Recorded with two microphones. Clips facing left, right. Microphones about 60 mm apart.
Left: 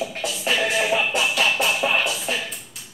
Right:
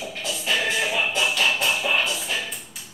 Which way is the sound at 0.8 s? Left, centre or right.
Left.